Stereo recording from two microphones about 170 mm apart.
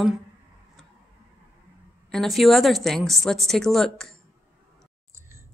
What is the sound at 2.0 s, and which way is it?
A woman's voice, centre (ahead or behind).